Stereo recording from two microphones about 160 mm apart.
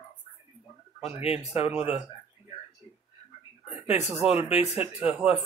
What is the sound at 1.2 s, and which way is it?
Speech, 40° left (ahead or behind).